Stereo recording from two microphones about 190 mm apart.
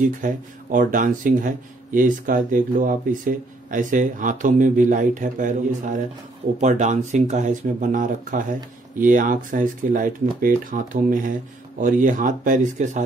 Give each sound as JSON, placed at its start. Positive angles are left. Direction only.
{"t": 0.0, "sound": "speech", "side_deg": -45}